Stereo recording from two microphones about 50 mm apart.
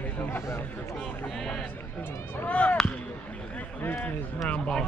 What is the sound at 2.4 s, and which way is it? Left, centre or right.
Speech, left.